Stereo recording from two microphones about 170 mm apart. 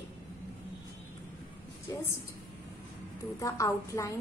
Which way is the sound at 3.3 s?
20° left (ahead or behind).